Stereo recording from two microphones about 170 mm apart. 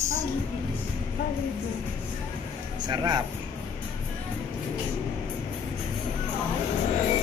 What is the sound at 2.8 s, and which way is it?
Speech, 25° right (ahead or behind).